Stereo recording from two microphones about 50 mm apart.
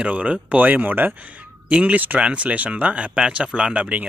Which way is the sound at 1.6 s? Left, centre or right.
Right.